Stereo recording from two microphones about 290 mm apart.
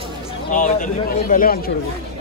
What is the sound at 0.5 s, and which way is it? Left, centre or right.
A man's voice, left.